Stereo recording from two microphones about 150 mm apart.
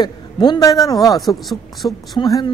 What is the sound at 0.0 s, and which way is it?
Speech, 30° left (ahead or behind).